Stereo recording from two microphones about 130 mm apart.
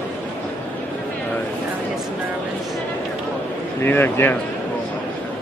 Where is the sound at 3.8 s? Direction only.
15° left (ahead or behind).